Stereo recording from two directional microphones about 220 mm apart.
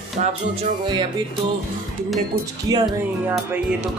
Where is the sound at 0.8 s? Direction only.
20° right (ahead or behind).